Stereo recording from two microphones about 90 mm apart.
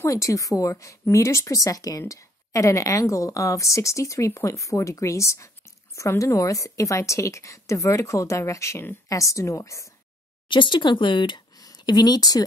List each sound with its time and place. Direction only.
0.0 s speech: 35° left (ahead or behind)
10.5 s speech: 65° left (ahead or behind)
11.5 s a sound: 45° left (ahead or behind)